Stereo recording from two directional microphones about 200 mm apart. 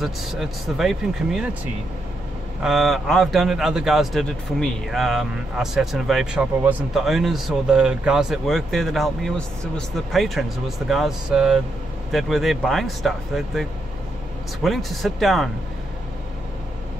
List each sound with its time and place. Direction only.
0.0 s speech: centre (ahead or behind)
2.6 s speech: centre (ahead or behind)